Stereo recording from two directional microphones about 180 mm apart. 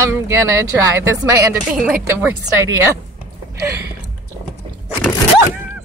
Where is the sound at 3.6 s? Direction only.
15° right (ahead or behind).